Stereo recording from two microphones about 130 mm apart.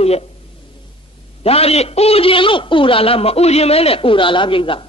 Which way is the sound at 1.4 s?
50° left (ahead or behind).